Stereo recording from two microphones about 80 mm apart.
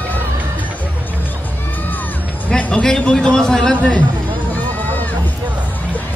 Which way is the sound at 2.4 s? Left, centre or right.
Centre.